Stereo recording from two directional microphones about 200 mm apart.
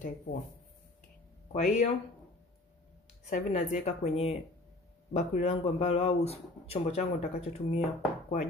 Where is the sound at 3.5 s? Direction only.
30° left (ahead or behind).